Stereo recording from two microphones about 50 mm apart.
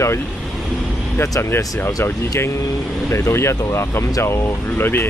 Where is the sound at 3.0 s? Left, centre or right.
Left.